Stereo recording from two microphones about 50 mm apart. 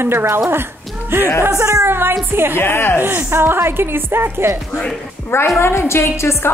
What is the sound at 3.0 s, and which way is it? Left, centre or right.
A woman's voice, right.